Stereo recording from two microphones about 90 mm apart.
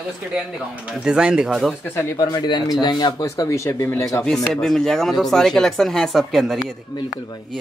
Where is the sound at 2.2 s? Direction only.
40° left (ahead or behind).